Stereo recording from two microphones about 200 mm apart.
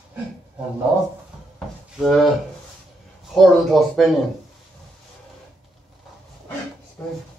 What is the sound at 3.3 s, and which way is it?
Speech, centre (ahead or behind).